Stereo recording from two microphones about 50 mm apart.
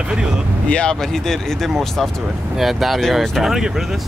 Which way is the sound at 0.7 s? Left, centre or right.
Centre.